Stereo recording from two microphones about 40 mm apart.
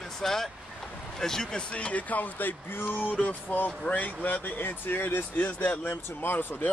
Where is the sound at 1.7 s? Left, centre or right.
Left.